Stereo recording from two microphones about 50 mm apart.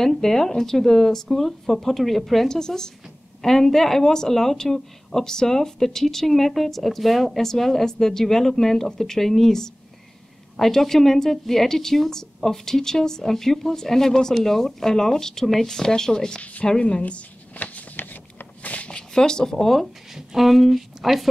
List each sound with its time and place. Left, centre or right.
0.0 s speech: centre
17.1 s shuffling cards: left
18.9 s a woman's voice: centre